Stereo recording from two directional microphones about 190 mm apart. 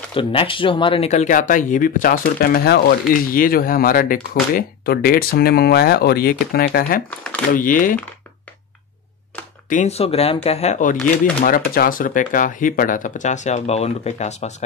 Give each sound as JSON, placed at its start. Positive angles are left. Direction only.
{"t": 0.1, "sound": "speech", "side_deg": 25}
{"t": 9.7, "sound": "speech", "side_deg": 40}
{"t": 11.4, "sound": "speech", "side_deg": 50}